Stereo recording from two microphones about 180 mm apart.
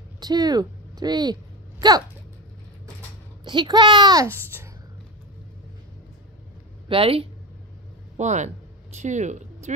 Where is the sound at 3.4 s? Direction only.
25° right (ahead or behind).